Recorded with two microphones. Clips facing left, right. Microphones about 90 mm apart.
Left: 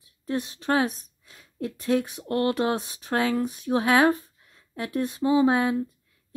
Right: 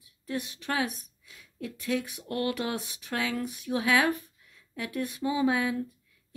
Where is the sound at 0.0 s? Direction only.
35° left (ahead or behind).